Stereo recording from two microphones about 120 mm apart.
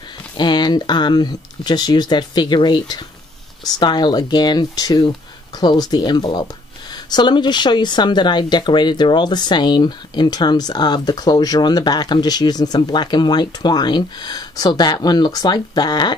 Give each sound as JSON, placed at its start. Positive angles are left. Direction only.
{"t": 0.4, "sound": "speech", "side_deg": 40}